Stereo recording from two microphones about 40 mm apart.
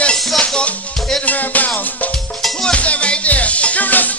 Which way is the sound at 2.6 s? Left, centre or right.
Left.